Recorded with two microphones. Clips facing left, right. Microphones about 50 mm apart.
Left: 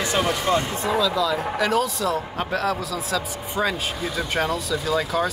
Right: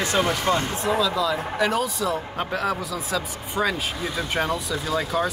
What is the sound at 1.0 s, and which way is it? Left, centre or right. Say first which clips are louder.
A man's voice: left 1 dB; centre.